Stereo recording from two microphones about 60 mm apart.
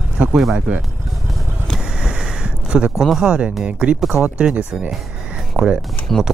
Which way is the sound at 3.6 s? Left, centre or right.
Centre.